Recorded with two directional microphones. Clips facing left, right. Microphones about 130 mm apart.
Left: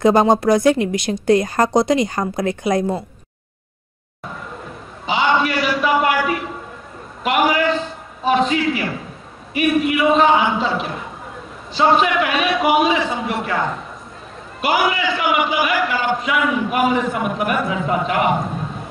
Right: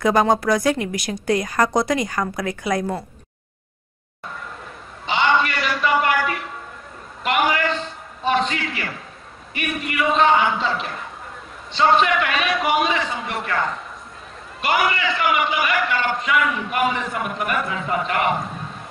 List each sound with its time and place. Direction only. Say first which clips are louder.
0.0 s a woman's voice: left 4 dB; 25° left (ahead or behind)
5.0 s a sound: left 2 dB; 5° left (ahead or behind)
8.2 s a man's voice: left 4 dB; 5° left (ahead or behind)